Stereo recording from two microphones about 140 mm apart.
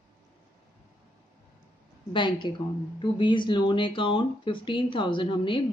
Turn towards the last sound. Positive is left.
turn(degrees=35)  # may be behind; listen again after turning